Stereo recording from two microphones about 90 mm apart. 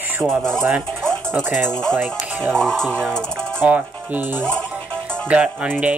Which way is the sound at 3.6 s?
15° right (ahead or behind).